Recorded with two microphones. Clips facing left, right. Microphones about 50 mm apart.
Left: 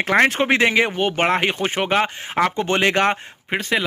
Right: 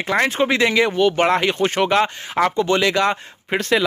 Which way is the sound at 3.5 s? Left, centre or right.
Centre.